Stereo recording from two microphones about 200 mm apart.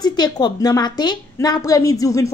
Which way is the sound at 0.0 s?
20° left (ahead or behind).